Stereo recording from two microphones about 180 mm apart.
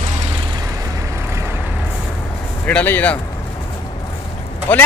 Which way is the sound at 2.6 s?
10° left (ahead or behind).